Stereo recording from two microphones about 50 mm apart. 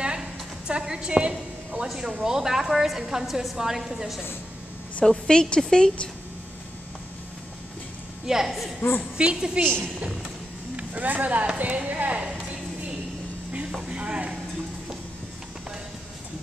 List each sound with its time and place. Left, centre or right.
0.0 s a sound: centre
1.9 s a woman's voice: centre
5.0 s a woman's voice: centre
8.3 s a woman's voice: centre
10.8 s speech: right
13.8 s a sound: right